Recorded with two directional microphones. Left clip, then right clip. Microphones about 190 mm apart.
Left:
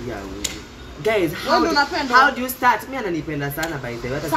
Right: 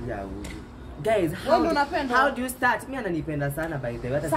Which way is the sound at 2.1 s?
10° right (ahead or behind).